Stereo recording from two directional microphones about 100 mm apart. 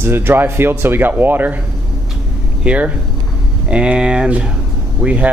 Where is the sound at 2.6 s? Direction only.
10° right (ahead or behind).